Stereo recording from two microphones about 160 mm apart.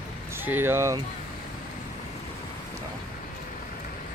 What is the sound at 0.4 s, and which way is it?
Speech, 15° right (ahead or behind).